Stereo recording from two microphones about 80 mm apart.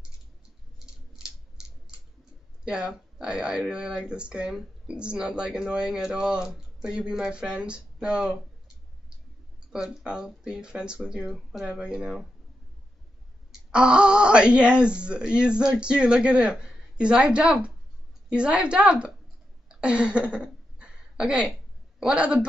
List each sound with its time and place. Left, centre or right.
2.6 s speech: centre
9.7 s speech: centre
13.7 s speech: centre
19.7 s a sound: centre
22.0 s speech: centre